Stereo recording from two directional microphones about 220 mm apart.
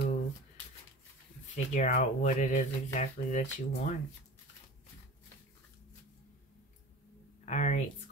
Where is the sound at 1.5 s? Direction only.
35° left (ahead or behind).